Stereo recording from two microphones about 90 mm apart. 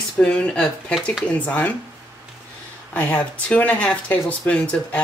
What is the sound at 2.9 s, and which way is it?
Speech, 20° left (ahead or behind).